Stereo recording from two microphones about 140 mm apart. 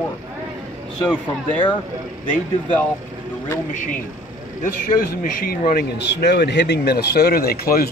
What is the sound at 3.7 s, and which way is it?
A man's voice, 70° left (ahead or behind).